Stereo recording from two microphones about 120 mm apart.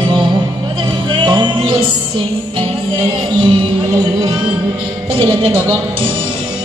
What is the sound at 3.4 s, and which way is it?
Music, 45° right (ahead or behind).